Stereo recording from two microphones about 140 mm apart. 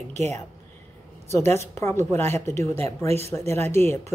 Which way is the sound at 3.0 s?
45° right (ahead or behind).